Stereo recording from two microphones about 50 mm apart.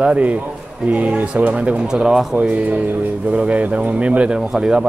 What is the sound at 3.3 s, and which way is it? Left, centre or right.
Speech, right.